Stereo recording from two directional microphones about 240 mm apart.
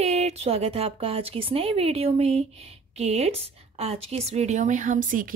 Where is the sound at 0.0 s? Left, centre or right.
Right.